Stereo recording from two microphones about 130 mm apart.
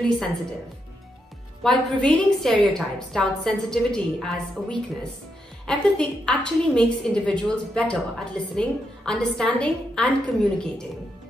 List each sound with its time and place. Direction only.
1.6 s a woman's voice: 5° left (ahead or behind)